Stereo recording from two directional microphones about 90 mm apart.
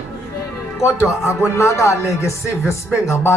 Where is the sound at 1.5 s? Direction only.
35° left (ahead or behind).